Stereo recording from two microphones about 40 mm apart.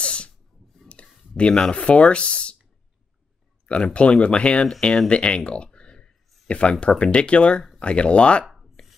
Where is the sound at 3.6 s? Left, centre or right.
Left.